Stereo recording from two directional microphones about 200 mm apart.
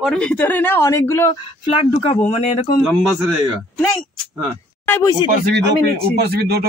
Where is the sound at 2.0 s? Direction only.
30° left (ahead or behind).